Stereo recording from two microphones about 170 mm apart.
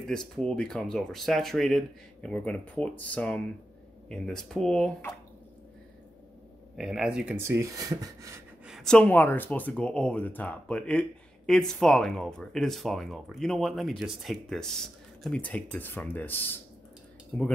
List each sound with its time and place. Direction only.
0.0 s speech: 5° left (ahead or behind)
6.8 s speech: centre (ahead or behind); by 8.4 s 20° right (ahead or behind)
8.6 s speech: centre (ahead or behind)